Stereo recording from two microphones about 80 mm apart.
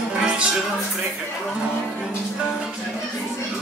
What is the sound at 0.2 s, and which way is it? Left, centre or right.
Music, centre.